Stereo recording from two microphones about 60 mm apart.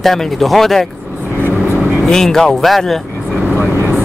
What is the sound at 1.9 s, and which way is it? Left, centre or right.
Speech, centre.